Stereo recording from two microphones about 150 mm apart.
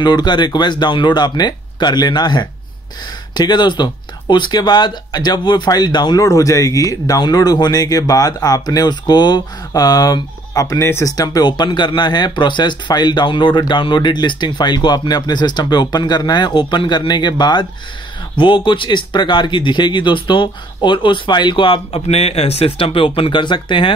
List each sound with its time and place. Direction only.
0.0 s speech: 30° left (ahead or behind)